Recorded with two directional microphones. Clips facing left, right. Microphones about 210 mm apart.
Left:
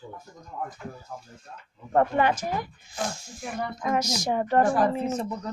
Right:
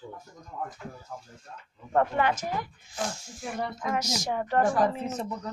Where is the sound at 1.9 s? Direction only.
25° left (ahead or behind).